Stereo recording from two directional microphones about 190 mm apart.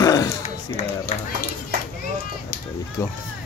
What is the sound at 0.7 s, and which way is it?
Speech, 45° left (ahead or behind).